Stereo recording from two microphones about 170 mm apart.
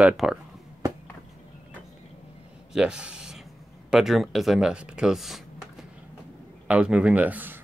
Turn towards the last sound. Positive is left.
turn(degrees=-10)  # may be behind; listen again after turning